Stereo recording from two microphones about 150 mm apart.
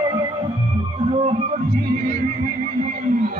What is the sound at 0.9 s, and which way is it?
Music, 40° right (ahead or behind).